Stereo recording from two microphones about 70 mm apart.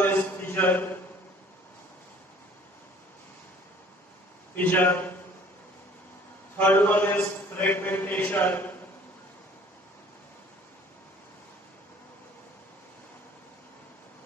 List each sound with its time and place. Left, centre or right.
0.0 s a sound: left
4.6 s a man's voice: left
6.6 s a man's voice: left